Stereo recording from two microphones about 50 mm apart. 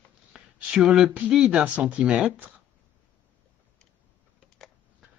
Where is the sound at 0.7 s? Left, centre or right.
Centre.